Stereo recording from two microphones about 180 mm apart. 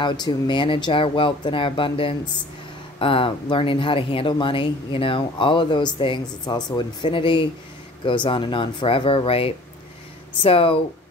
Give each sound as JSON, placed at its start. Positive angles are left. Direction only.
{"t": 0.0, "sound": "speech", "side_deg": 25}